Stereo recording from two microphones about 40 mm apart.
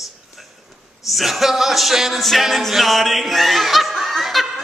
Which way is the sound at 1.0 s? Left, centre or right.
Centre.